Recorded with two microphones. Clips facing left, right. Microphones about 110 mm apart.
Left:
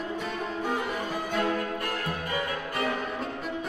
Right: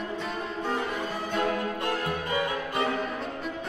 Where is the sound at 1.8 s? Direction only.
20° right (ahead or behind).